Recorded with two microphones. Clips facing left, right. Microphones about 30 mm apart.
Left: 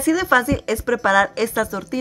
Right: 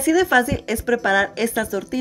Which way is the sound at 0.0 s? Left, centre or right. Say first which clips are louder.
Right 1 dB; left.